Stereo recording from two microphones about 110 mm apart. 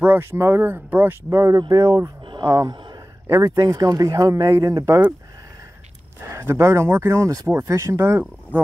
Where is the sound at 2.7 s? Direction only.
40° right (ahead or behind).